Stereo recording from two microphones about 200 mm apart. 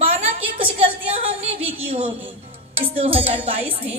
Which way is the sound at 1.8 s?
30° right (ahead or behind).